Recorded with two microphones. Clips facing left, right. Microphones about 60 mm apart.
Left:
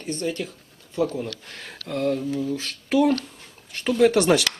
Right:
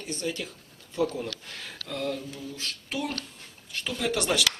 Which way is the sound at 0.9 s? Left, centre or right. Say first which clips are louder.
Left 3 dB; left.